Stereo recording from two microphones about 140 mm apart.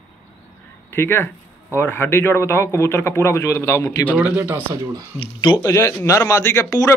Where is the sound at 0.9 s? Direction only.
15° left (ahead or behind).